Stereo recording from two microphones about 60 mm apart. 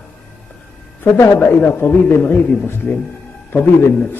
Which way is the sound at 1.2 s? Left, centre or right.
Left.